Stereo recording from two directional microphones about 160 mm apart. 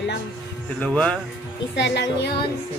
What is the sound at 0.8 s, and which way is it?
Speech, 5° left (ahead or behind).